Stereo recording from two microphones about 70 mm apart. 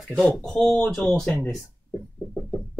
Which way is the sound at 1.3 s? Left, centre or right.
Centre.